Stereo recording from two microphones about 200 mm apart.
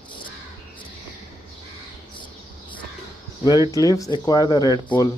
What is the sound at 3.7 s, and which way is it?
Speech, 15° left (ahead or behind).